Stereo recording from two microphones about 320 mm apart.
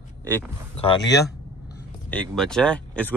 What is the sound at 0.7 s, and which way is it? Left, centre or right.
Speech, centre.